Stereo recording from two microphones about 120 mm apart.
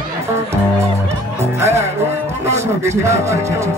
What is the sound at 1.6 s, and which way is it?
Music, 25° right (ahead or behind).